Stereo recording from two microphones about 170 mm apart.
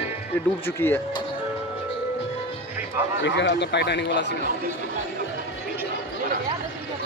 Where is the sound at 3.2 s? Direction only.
90° left.